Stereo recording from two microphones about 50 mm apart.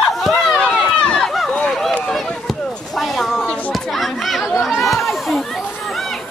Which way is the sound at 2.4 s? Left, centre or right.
Centre.